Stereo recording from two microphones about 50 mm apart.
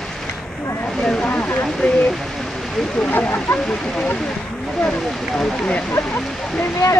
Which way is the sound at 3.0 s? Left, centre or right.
Left.